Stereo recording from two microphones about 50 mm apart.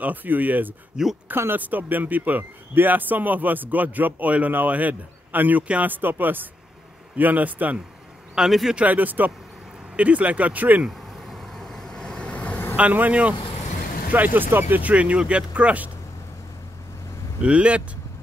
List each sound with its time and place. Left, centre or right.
0.0 s a man's voice: right
1.0 s speech: centre
1.3 s speech: right
1.6 s a man's voice: right
8.4 s speech: centre
8.7 s a man's voice: right
10.9 s vehicle: centre
12.2 s vehicle: left
12.7 s a man's voice: right
14.8 s speech: right
17.4 s speech: right